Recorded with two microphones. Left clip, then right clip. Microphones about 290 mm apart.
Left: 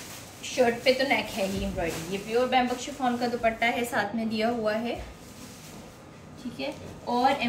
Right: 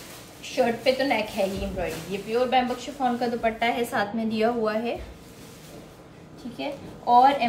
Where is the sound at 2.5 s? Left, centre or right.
Centre.